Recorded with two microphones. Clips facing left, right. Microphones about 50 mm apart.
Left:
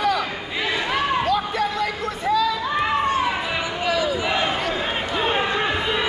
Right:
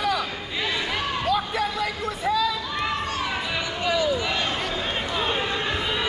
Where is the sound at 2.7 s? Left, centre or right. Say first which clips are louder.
Left 6 dB; left.